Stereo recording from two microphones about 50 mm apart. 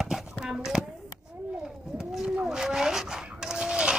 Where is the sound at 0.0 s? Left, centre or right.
Centre.